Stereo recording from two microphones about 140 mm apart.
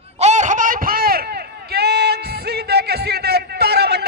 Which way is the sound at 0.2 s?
55° right (ahead or behind).